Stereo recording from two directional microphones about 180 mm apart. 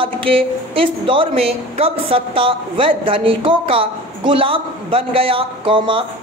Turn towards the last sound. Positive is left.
turn(degrees=-30)  # may be behind; listen again after turning